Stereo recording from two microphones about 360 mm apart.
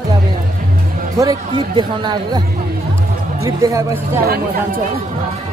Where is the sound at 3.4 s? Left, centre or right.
Centre.